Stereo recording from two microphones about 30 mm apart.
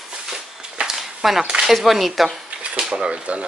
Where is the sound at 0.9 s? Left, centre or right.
Centre.